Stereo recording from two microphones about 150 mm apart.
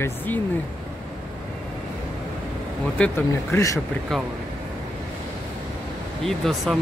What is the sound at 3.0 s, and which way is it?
Speech, 15° left (ahead or behind).